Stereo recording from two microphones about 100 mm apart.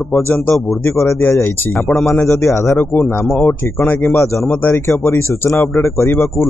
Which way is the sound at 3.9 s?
20° left (ahead or behind).